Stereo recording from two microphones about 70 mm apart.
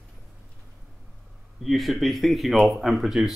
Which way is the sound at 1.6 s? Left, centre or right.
Centre.